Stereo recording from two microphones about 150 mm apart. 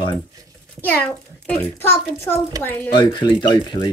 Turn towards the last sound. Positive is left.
turn(degrees=30)  # may be behind; listen again after turning